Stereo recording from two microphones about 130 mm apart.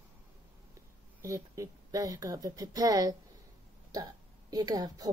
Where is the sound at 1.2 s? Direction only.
25° right (ahead or behind).